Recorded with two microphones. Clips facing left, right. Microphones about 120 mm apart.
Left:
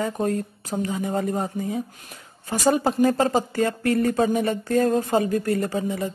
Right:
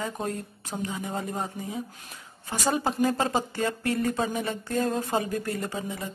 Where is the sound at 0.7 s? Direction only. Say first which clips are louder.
Left 6 dB; 45° left (ahead or behind).